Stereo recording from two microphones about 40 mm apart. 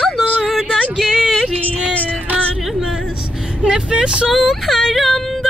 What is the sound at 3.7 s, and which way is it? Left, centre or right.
Vehicle, right.